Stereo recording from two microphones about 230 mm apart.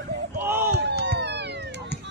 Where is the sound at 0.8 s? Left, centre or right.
Right.